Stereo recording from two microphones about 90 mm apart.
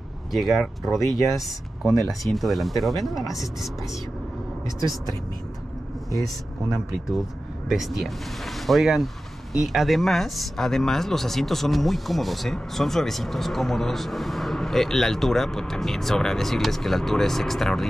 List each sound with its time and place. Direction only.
0.3 s speech: centre (ahead or behind)
4.6 s speech: 40° left (ahead or behind)
7.7 s speech: 5° right (ahead or behind)